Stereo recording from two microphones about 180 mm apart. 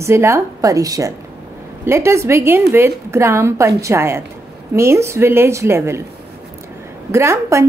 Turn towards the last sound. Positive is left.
turn(degrees=-15)  # may be behind; listen again after turning